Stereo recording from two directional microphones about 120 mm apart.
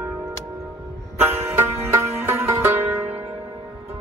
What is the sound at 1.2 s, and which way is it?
Music, 20° right (ahead or behind).